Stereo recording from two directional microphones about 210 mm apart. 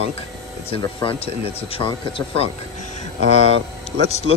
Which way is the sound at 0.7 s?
25° left (ahead or behind).